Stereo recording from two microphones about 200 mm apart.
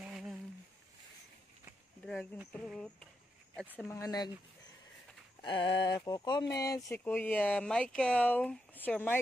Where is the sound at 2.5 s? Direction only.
5° left (ahead or behind).